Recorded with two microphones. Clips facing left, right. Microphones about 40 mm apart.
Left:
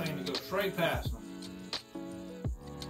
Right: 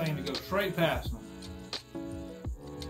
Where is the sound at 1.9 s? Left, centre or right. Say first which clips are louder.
Right 2 dB; centre.